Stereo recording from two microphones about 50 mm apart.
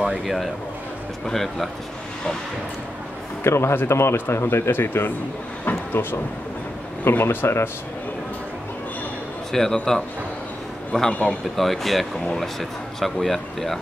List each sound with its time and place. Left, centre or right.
0.0 s speech: centre
3.4 s speech: left
5.7 s a sound: left
7.1 s speech: left
9.5 s speech: centre
10.9 s speech: centre
11.2 s speech: centre